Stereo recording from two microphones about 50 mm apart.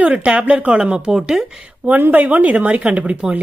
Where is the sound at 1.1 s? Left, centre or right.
Centre.